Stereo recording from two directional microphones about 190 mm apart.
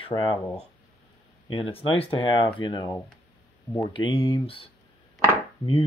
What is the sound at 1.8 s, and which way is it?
Speech, 30° left (ahead or behind).